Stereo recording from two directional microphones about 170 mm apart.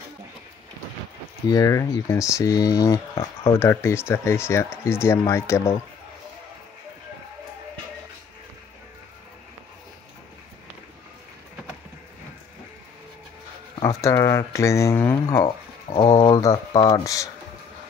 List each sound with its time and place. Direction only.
1.5 s speech: 20° left (ahead or behind)
13.7 s speech: 20° left (ahead or behind)
16.0 s speech: 30° left (ahead or behind)